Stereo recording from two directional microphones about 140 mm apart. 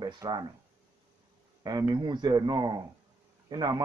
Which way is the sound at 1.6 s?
30° right (ahead or behind).